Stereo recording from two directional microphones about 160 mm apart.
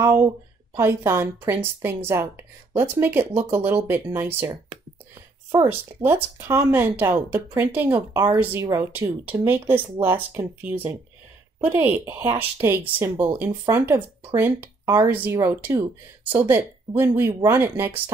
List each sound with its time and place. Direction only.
0.0 s speech: 15° right (ahead or behind)
5.5 s speech: 15° right (ahead or behind)